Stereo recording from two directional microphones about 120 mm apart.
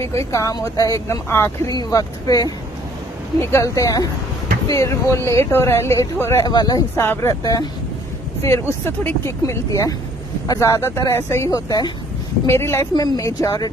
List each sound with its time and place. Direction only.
0.1 s speech: 25° left (ahead or behind)
1.7 s speech: 30° left (ahead or behind)
6.4 s speech: 35° left (ahead or behind)
7.0 s speech: 20° left (ahead or behind)
12.4 s speech: 20° left (ahead or behind)
12.9 s speech: 30° left (ahead or behind)